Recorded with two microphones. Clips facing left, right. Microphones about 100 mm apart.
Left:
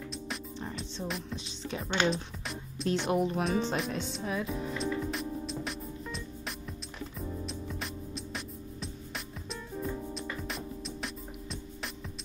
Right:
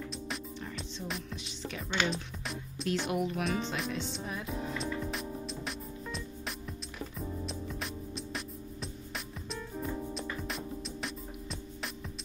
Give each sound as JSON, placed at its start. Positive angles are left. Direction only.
{"t": 1.3, "sound": "speech", "side_deg": 30}
{"t": 2.0, "sound": "music", "side_deg": 0}
{"t": 3.1, "sound": "speech", "side_deg": 35}
{"t": 4.1, "sound": "music", "side_deg": 0}
{"t": 10.0, "sound": "music", "side_deg": 0}